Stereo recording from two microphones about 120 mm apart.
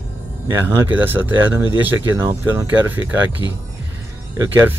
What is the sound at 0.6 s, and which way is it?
Speech, 15° right (ahead or behind).